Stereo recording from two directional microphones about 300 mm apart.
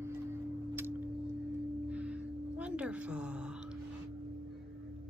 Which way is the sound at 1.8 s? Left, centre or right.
Centre.